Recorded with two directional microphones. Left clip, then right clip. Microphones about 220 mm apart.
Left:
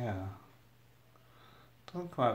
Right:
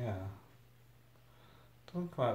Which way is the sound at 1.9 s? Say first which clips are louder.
Left 2 dB; 30° left (ahead or behind).